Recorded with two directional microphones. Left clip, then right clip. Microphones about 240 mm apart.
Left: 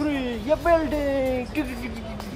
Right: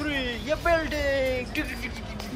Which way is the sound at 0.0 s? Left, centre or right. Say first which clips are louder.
Left 2 dB; left.